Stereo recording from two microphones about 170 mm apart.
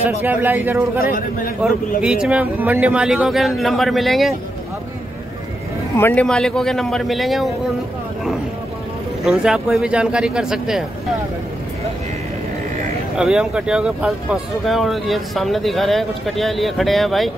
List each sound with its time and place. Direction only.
0.0 s a man's voice: 10° right (ahead or behind)
1.0 s a man's voice: 55° left (ahead or behind)
2.0 s speech: 5° right (ahead or behind)
5.9 s speech: 10° left (ahead or behind)
9.2 s speech: 5° right (ahead or behind)
13.2 s speech: 5° right (ahead or behind)